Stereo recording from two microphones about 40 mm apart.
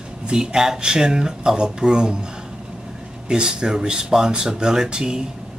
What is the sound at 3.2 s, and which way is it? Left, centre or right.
Speech, centre.